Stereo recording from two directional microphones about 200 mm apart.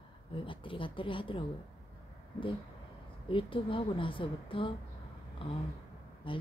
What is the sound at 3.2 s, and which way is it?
A woman's voice, 25° left (ahead or behind).